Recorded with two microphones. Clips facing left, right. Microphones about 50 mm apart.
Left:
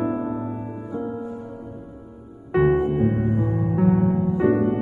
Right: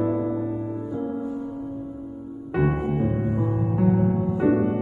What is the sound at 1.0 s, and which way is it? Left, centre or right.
Music, left.